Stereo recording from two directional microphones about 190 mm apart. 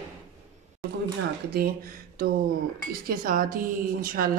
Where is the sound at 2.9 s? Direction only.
50° right (ahead or behind).